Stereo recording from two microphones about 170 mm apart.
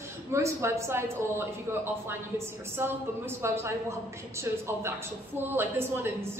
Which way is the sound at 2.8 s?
15° right (ahead or behind).